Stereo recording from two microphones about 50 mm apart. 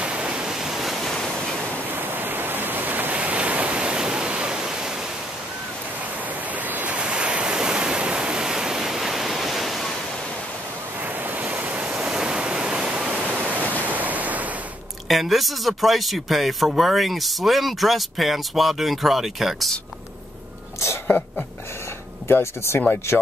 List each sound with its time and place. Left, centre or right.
0.0 s waves: right
1.0 s waves: centre
2.0 s waves: right; by 4.9 s centre
6.5 s waves: right
7.0 s waves: right; by 9.9 s centre
11.0 s waves: right
12.0 s waves: centre
12.9 s waterfall: right
15.0 s speech: centre
21.1 s a sound: left
22.3 s speech: left